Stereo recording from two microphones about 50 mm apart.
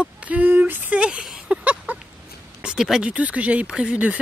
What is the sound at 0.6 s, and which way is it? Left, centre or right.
Speech, right.